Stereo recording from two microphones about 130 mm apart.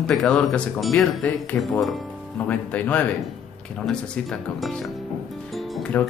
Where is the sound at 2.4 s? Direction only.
10° left (ahead or behind).